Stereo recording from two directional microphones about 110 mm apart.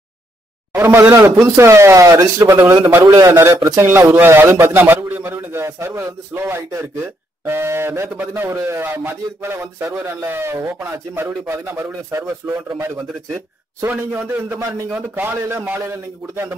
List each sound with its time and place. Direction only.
0.7 s a man's voice: 20° right (ahead or behind)
13.8 s a man's voice: 15° right (ahead or behind)